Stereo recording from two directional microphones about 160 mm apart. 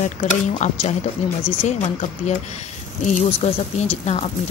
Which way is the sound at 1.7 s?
45° left (ahead or behind).